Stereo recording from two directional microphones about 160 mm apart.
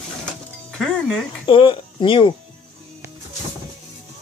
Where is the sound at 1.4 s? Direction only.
35° left (ahead or behind).